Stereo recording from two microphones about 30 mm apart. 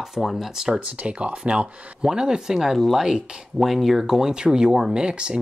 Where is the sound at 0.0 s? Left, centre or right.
Centre.